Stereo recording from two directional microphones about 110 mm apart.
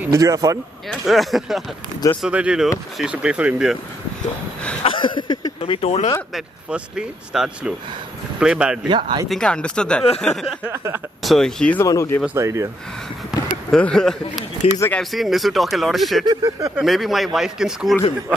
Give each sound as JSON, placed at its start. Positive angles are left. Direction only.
{"t": 0.1, "sound": "speech", "side_deg": -30}
{"t": 0.8, "sound": "speech", "side_deg": 0}
{"t": 4.8, "sound": "a sound", "side_deg": 50}
{"t": 5.6, "sound": "speech", "side_deg": 60}
{"t": 6.3, "sound": "speech", "side_deg": -5}
{"t": 8.8, "sound": "speech", "side_deg": -45}
{"t": 9.3, "sound": "speech", "side_deg": 10}
{"t": 11.8, "sound": "speech", "side_deg": 25}
{"t": 12.4, "sound": "speech", "side_deg": -25}
{"t": 13.7, "sound": "speech", "side_deg": 5}
{"t": 14.6, "sound": "speech", "side_deg": 65}
{"t": 15.0, "sound": "speech", "side_deg": 0}
{"t": 16.3, "sound": "speech", "side_deg": -40}
{"t": 16.8, "sound": "speech", "side_deg": 0}